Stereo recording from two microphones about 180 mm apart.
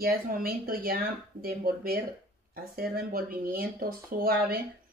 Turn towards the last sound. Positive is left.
turn(degrees=-55)  # may be behind; listen again after turning